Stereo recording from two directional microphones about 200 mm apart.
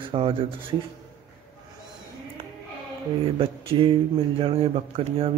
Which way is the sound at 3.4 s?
25° right (ahead or behind).